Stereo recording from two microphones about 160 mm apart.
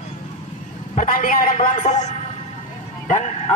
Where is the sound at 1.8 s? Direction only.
45° left (ahead or behind).